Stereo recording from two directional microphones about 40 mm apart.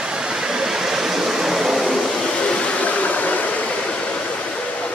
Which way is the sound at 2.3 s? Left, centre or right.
Left.